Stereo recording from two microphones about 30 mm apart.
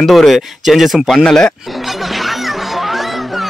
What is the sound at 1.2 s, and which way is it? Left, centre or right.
Speech, left.